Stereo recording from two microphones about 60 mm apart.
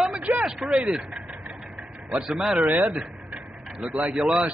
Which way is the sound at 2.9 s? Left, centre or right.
Right.